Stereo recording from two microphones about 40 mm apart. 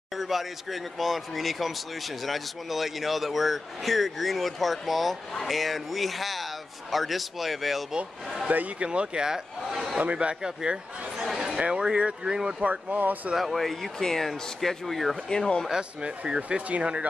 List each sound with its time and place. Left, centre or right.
0.2 s speech: centre
8.5 s speech: right
8.8 s a man's voice: right
11.3 s a sound: centre
11.8 s speech: right
12.9 s speech: right
13.4 s speech: centre
15.2 s speech: centre
15.7 s speech: right